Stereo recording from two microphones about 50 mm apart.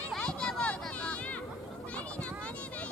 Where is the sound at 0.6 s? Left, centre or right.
Left.